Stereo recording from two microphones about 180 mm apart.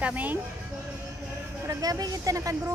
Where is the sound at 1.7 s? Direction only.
20° right (ahead or behind).